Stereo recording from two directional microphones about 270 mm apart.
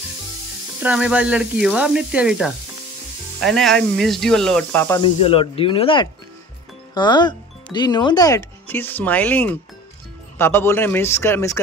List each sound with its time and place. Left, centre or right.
0.8 s speech: centre
5.2 s a man's voice: left